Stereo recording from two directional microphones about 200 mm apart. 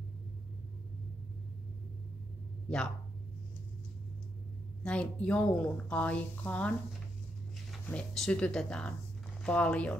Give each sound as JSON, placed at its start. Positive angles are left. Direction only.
{"t": 4.8, "sound": "speech", "side_deg": 5}
{"t": 7.7, "sound": "speech", "side_deg": 5}